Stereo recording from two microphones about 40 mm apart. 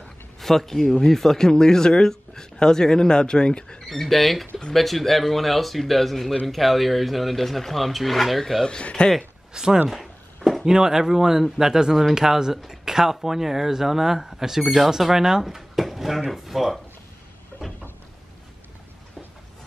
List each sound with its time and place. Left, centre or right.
0.4 s speech: centre; by 3.8 s left
3.9 s speech: centre
8.6 s speech: left
9.5 s speech: centre
9.8 s a sound: centre
10.6 s speech: centre
17.5 s a sound: left